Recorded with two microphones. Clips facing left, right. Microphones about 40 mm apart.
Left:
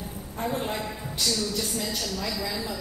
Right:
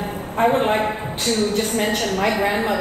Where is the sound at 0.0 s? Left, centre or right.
Right.